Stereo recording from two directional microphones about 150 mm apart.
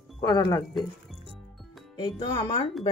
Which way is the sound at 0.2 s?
25° left (ahead or behind).